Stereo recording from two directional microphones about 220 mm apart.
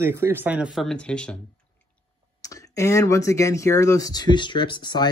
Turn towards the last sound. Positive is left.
turn(degrees=20)  # may be behind; listen again after turning